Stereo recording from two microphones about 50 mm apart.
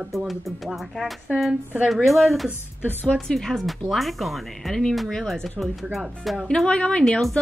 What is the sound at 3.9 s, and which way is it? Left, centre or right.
Speech, centre.